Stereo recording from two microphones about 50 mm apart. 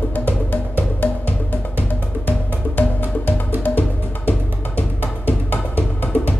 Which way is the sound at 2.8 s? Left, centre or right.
Left.